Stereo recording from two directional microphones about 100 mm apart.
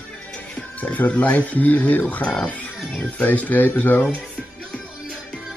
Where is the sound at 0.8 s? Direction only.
15° left (ahead or behind).